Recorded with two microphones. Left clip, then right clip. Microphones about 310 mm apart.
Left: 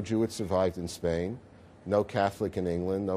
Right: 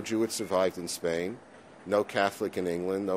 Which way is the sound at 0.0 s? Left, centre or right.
Left.